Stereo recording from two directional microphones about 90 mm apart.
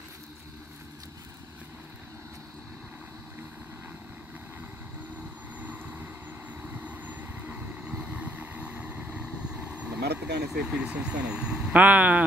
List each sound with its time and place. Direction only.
5.6 s vehicle: 20° right (ahead or behind)
10.5 s speech: 10° right (ahead or behind)